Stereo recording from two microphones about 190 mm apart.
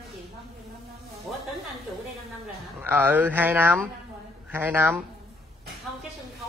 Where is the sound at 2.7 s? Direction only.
10° right (ahead or behind).